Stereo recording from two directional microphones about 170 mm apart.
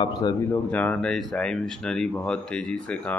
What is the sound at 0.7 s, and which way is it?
Speech, 10° left (ahead or behind).